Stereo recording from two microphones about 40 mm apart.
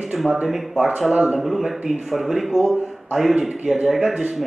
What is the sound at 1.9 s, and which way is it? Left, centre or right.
Speech, centre.